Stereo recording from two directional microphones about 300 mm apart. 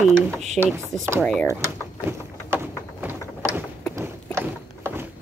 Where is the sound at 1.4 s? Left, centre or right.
Centre.